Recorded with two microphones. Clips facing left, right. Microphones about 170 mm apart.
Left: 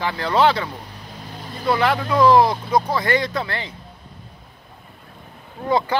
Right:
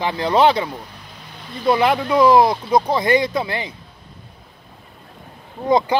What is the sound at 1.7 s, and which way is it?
Speech, 20° right (ahead or behind).